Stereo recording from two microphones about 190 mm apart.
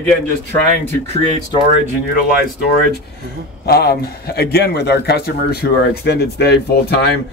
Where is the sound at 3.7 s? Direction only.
55° left (ahead or behind).